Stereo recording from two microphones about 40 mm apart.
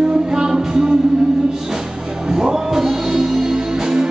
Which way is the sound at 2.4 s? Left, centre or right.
Centre.